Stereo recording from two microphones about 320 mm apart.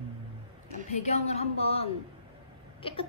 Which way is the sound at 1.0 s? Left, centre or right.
Left.